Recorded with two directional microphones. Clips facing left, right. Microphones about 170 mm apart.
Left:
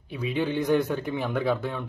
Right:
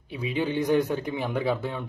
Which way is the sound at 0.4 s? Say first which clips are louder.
Even; 10° right (ahead or behind).